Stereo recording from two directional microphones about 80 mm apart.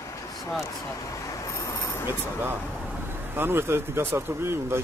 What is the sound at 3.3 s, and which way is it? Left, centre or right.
Speech, right.